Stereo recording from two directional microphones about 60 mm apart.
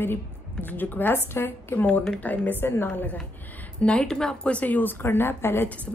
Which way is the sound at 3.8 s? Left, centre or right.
Centre.